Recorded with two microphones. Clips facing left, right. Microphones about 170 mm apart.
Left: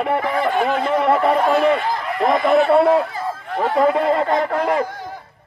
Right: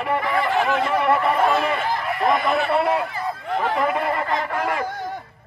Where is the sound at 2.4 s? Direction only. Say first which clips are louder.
Left 7 dB; 50° left (ahead or behind).